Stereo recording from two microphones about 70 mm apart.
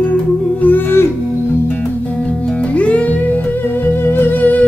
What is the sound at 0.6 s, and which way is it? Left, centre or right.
Music, left.